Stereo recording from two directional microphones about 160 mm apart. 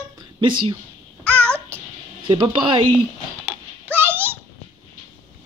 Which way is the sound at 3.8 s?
15° right (ahead or behind).